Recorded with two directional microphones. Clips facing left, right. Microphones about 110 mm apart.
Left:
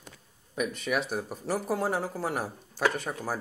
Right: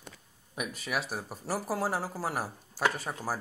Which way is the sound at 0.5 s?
5° right (ahead or behind).